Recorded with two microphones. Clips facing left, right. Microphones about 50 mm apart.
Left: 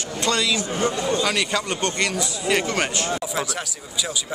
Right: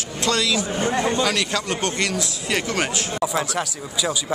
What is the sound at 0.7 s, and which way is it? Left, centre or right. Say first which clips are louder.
Speech: right 1 dB; right.